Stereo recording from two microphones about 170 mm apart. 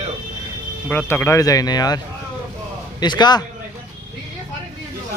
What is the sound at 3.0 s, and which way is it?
Speech, 25° left (ahead or behind).